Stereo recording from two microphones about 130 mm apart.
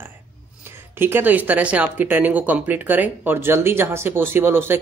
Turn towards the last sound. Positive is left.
turn(degrees=-15)  # may be behind; listen again after turning